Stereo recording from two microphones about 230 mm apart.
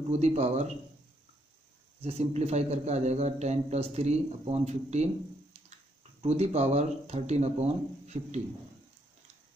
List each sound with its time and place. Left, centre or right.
0.2 s a man's voice: right
2.0 s a man's voice: right
6.2 s a man's voice: right